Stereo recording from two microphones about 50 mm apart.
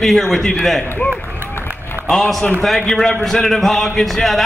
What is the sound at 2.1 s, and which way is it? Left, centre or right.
A man's voice, centre.